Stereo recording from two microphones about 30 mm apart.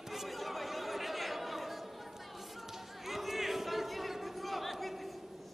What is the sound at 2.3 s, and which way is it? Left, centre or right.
Crowd, centre.